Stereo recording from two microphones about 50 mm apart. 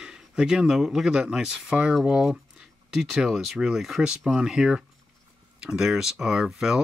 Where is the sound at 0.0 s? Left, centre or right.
Centre.